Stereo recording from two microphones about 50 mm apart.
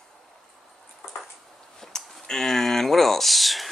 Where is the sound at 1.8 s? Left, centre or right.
Centre.